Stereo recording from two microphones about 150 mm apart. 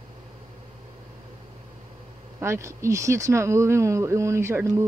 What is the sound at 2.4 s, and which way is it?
Speech, 15° right (ahead or behind).